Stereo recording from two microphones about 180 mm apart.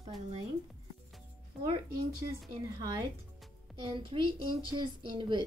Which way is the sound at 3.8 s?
30° right (ahead or behind).